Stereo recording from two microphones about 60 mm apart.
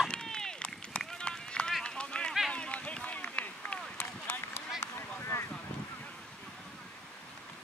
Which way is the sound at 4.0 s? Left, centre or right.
Left.